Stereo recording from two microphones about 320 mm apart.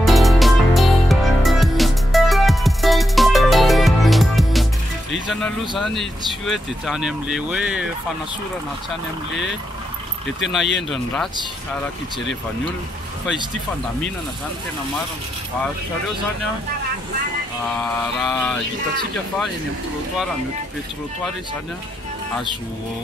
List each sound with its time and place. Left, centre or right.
0.0 s music: centre
5.1 s speech: centre
10.5 s speech: centre
18.2 s speech: centre